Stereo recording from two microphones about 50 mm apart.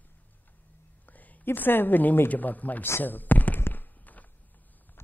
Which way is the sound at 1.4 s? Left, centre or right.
Left.